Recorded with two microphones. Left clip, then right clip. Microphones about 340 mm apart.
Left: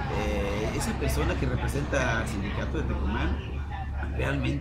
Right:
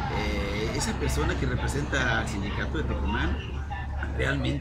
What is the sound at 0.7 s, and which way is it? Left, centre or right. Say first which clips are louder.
A man's voice: right 1 dB; centre.